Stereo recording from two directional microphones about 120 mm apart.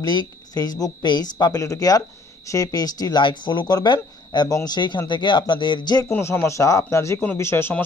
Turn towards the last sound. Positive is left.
turn(degrees=20)  # may be behind; listen again after turning